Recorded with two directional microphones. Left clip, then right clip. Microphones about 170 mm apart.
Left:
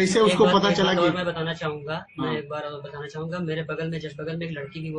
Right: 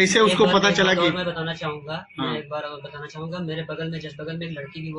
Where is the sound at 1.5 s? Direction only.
30° left (ahead or behind).